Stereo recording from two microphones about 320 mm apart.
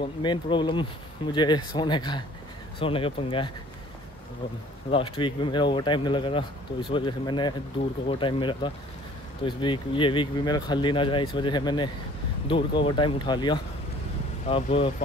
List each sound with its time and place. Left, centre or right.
0.2 s speech: centre
4.9 s speech: centre